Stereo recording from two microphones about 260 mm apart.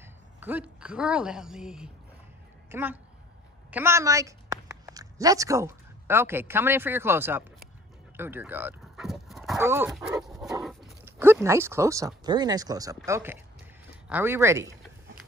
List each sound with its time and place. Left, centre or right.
0.4 s a woman's voice: centre
10.2 s dog: centre
10.6 s a sound: centre
12.2 s speech: centre